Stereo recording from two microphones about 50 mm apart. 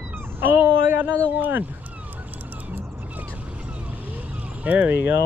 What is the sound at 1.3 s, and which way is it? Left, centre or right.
Speech, right.